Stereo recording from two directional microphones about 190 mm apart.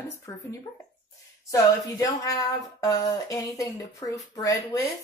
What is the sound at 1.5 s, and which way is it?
A woman's voice, 15° left (ahead or behind).